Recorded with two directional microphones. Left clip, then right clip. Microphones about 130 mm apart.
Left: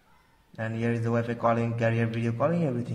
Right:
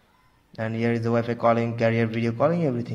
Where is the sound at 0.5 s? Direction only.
30° right (ahead or behind).